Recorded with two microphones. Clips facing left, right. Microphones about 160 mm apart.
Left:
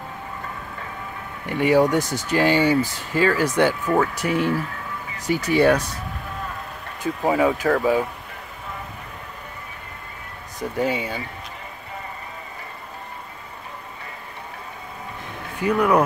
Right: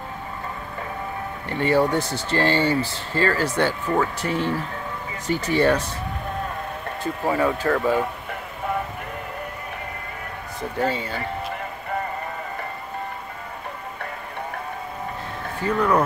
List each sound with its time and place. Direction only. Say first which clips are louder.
1.4 s speech: left 3 dB; 10° left (ahead or behind)
7.0 s speech: left 3 dB; 10° left (ahead or behind)
10.6 s speech: left 1 dB; 15° left (ahead or behind)
15.6 s speech: left 2 dB; 15° left (ahead or behind)